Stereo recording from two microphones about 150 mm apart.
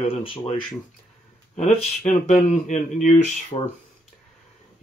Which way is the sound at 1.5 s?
45° left (ahead or behind).